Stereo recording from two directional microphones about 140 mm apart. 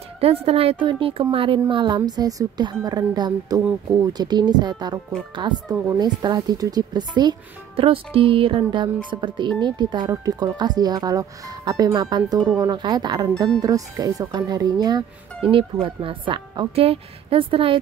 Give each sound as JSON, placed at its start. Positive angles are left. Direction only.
{"t": 0.2, "sound": "speech", "side_deg": -45}
{"t": 15.5, "sound": "speech", "side_deg": -40}